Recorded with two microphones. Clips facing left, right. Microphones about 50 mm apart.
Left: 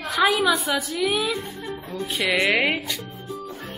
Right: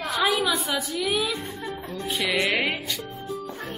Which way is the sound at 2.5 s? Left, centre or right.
Centre.